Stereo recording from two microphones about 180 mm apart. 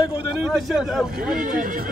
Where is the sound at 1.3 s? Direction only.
50° right (ahead or behind).